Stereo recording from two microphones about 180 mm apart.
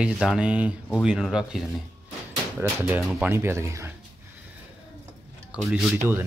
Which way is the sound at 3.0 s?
Centre (ahead or behind).